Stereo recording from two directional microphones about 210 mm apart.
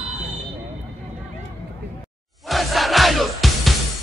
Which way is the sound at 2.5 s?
Centre (ahead or behind).